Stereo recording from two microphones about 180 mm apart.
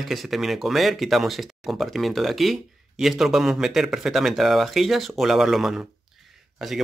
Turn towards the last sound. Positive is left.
turn(degrees=0)  # may be behind; listen again after turning